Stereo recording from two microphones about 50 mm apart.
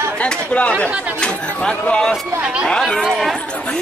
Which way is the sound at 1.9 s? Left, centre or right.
Centre.